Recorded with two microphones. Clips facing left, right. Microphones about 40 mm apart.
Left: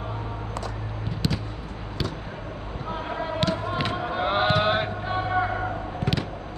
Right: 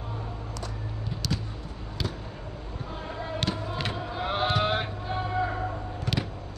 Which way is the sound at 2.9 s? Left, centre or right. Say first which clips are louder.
Left 6 dB; left.